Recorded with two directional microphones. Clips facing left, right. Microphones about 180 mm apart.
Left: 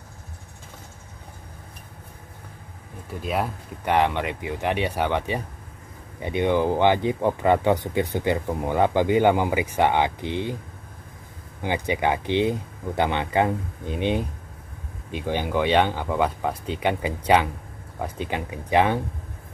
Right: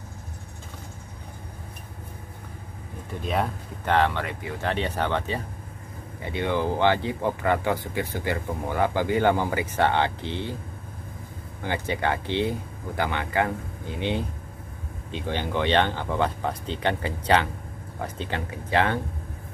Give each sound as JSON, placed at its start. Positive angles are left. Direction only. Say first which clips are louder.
{"t": 3.1, "sound": "speech", "louder": "even", "side_deg": 5}
{"t": 11.6, "sound": "speech", "louder": "left 3 dB", "side_deg": 15}